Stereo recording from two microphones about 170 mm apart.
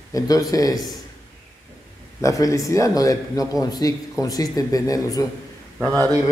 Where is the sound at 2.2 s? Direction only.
20° left (ahead or behind).